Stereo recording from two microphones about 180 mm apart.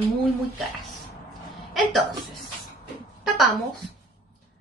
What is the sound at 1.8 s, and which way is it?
Speech, centre (ahead or behind).